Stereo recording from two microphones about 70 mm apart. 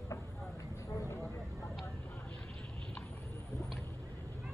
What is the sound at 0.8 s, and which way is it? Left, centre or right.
Vehicle, left.